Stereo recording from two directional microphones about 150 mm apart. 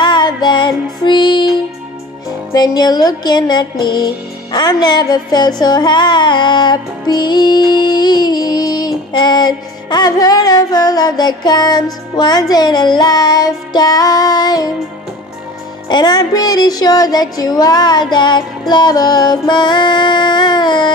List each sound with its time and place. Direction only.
0.0 s music: 30° left (ahead or behind)
2.5 s music: 25° left (ahead or behind)
15.9 s music: 30° left (ahead or behind)